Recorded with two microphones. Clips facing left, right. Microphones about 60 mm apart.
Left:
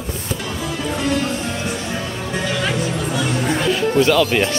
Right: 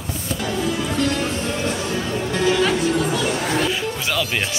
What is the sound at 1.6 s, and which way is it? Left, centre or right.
Music, centre.